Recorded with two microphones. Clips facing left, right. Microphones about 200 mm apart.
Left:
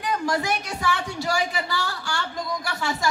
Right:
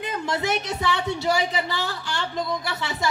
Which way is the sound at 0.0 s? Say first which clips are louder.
Left 1 dB; 20° right (ahead or behind).